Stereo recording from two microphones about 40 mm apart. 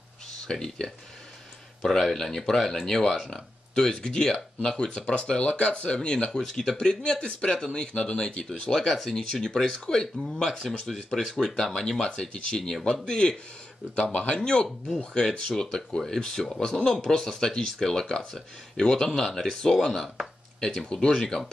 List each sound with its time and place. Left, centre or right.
0.5 s speech: centre
1.8 s speech: centre
3.7 s speech: centre
5.0 s speech: left
5.9 s speech: centre
13.9 s speech: left
14.4 s speech: left